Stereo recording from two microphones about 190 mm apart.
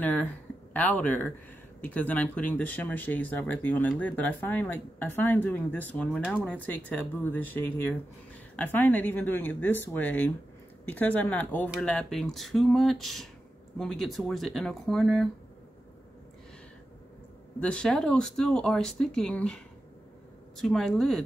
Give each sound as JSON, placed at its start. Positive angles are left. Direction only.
{"t": 0.0, "sound": "speech", "side_deg": 10}
{"t": 17.6, "sound": "speech", "side_deg": 5}